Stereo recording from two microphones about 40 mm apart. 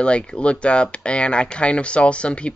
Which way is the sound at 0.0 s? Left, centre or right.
Left.